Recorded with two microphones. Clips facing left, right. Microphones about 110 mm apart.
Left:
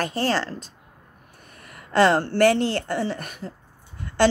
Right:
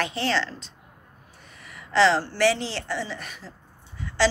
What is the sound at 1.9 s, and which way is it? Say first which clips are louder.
A woman's voice: left 2 dB; 55° left (ahead or behind).